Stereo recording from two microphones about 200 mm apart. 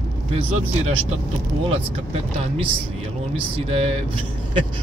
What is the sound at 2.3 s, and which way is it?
Speech, 30° right (ahead or behind).